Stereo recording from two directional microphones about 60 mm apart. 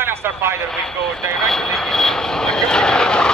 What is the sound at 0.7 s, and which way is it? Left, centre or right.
Vehicle, centre.